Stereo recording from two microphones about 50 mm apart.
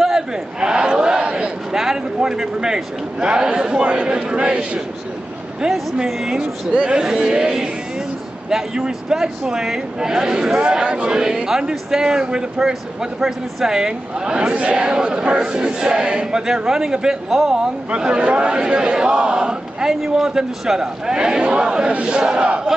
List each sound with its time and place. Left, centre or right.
0.6 s a man's voice: centre
6.0 s speech: centre
6.7 s speech: right
17.9 s speech: centre